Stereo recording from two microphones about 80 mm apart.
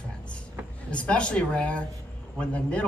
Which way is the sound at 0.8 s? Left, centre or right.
Centre.